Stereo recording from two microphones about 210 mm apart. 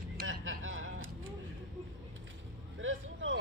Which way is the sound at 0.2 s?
65° right (ahead or behind).